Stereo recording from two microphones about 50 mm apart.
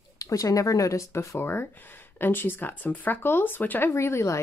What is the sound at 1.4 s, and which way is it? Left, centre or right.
Speech, left.